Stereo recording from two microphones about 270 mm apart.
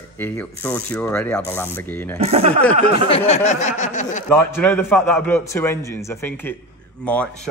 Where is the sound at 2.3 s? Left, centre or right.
Right.